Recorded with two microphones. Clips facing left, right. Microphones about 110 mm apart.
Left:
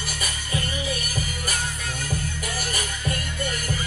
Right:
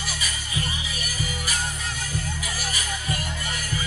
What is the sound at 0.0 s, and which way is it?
Music, 50° left (ahead or behind).